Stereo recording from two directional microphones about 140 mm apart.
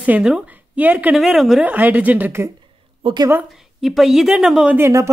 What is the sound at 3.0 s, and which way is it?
Speech, 30° right (ahead or behind).